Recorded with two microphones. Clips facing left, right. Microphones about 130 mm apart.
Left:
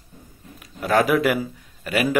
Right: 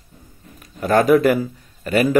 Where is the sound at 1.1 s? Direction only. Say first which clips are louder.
Right 6 dB; 40° right (ahead or behind).